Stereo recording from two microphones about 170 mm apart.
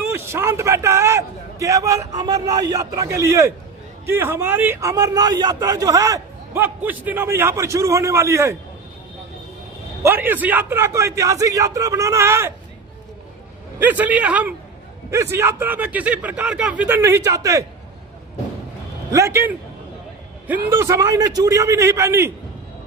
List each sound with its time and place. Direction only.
0.1 s a man's voice: 15° right (ahead or behind)
10.0 s a man's voice: 10° right (ahead or behind)
13.7 s a man's voice: 10° right (ahead or behind)
19.1 s a man's voice: 15° right (ahead or behind)
20.7 s a man's voice: 15° right (ahead or behind)